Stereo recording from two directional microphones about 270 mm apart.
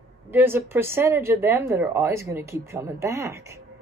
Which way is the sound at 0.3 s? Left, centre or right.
Centre.